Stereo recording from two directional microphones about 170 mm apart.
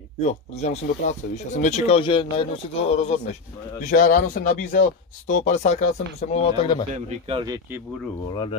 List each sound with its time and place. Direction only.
0.2 s speech: 40° left (ahead or behind)
3.9 s speech: 50° left (ahead or behind); by 6.8 s 35° left (ahead or behind)
7.1 s speech: 30° right (ahead or behind)